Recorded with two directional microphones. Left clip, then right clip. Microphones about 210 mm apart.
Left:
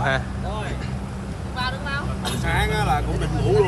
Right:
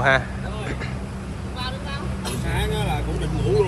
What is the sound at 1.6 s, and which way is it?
Vehicle, 5° left (ahead or behind).